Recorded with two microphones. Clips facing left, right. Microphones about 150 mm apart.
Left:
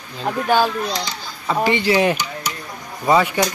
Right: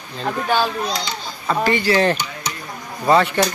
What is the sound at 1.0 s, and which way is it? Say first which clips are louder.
Speech: right 1 dB; 15° left (ahead or behind).